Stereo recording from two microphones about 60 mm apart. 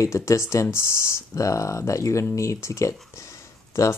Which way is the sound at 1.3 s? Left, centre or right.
Left.